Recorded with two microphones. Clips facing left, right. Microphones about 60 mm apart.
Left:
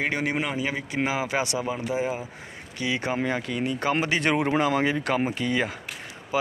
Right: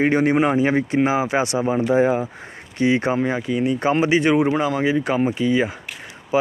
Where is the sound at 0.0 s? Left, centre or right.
Right.